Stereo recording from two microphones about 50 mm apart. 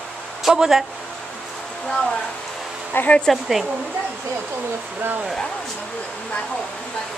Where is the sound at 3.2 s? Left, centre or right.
Centre.